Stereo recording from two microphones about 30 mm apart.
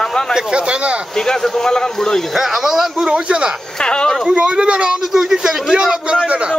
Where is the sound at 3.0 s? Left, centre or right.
Right.